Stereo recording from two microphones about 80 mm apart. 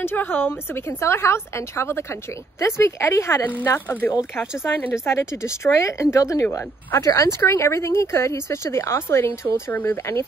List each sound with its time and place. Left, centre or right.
0.0 s speech: left
3.6 s speech: left
4.9 s speech: left
9.7 s speech: left